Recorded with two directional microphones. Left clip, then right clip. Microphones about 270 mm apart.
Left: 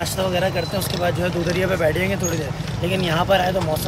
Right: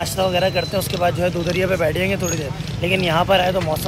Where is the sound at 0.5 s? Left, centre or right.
Right.